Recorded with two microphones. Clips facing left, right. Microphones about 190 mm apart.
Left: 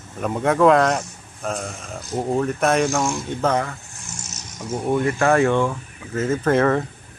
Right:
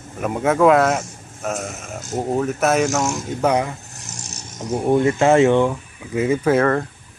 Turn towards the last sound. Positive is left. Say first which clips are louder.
# right 1 dB
turn(degrees=0)  # may be behind; listen again after turning